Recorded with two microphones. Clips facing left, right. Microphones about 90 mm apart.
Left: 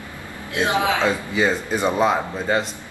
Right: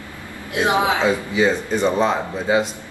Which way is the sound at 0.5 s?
20° right (ahead or behind).